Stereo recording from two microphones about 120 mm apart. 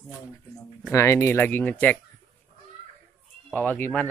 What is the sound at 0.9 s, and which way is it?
Speech, 25° left (ahead or behind).